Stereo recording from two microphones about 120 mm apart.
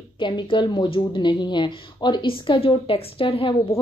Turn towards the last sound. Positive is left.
turn(degrees=50)  # may be behind; listen again after turning